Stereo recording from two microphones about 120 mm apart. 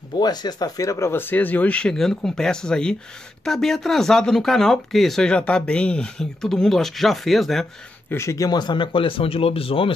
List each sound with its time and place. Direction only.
0.2 s speech: 35° left (ahead or behind); by 7.6 s centre (ahead or behind)
8.1 s speech: 25° left (ahead or behind); by 9.9 s 50° left (ahead or behind)